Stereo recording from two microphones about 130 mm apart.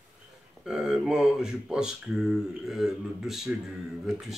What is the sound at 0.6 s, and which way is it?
Speech, 5° right (ahead or behind).